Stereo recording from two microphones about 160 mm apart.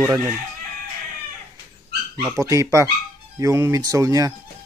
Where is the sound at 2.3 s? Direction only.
20° right (ahead or behind).